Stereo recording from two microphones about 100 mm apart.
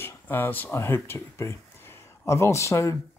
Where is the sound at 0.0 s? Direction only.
20° left (ahead or behind).